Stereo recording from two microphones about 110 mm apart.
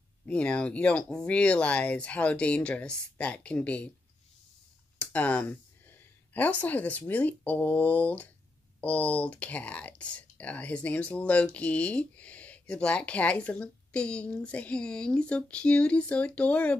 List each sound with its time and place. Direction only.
0.3 s speech: 10° left (ahead or behind)
4.9 s speech: 10° left (ahead or behind)